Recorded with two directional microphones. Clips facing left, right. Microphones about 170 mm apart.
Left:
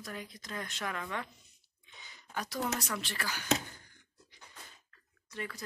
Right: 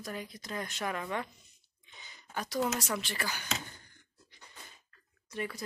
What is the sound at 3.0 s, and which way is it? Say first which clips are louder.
Speech: right 2 dB; centre (ahead or behind).